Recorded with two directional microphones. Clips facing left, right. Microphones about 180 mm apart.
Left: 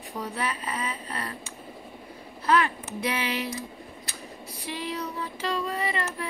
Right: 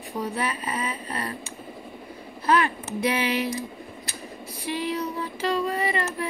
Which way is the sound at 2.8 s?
5° right (ahead or behind).